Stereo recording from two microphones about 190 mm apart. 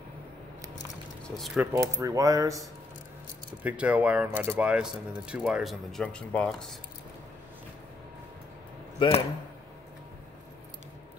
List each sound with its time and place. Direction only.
1.2 s speech: centre (ahead or behind)
1.6 s speech: 15° right (ahead or behind)
3.6 s speech: 5° right (ahead or behind)
9.0 s speech: 25° left (ahead or behind)